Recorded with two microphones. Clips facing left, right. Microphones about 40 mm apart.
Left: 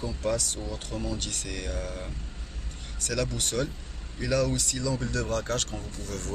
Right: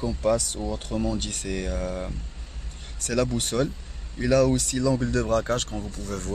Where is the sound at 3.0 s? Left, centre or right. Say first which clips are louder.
Right 5 dB; right.